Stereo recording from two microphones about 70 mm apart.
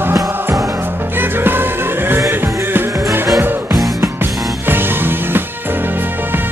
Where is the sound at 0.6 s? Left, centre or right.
Right.